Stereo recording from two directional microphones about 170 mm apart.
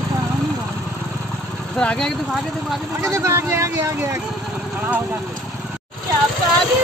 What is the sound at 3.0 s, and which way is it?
Speech, 15° right (ahead or behind).